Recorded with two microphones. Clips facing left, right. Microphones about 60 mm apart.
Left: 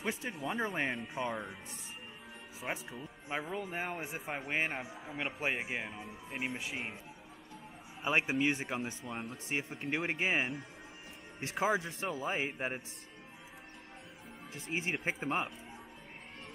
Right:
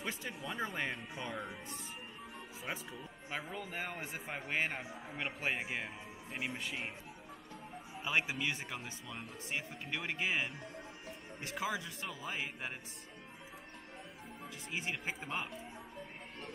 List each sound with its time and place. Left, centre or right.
0.0 s speech: centre
2.6 s speech: centre
8.0 s speech: left
14.5 s speech: left